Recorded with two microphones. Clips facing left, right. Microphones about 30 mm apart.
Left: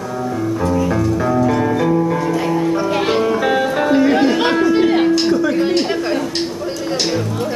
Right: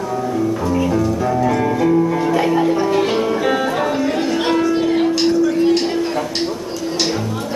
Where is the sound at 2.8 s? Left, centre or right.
Centre.